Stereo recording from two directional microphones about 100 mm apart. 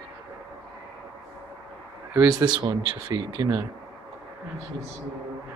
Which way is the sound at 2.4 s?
45° right (ahead or behind).